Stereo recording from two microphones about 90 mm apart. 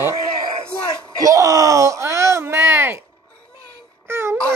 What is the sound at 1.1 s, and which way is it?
Speech, 40° right (ahead or behind).